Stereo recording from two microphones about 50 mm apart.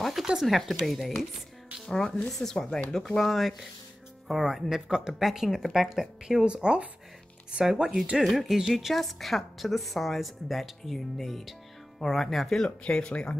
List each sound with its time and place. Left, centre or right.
0.0 s a sound: centre
0.4 s a woman's voice: centre
2.2 s a woman's voice: centre
4.6 s speech: centre
6.4 s a woman's voice: centre
12.6 s speech: left